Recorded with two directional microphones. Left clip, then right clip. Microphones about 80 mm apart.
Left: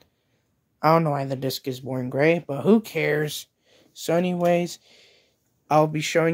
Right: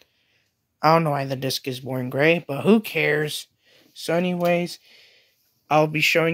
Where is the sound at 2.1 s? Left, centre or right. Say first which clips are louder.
Right 1 dB; left.